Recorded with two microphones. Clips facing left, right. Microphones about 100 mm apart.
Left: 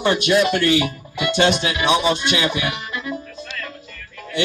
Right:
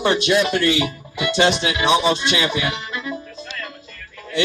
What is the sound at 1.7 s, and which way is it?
Music, 25° right (ahead or behind).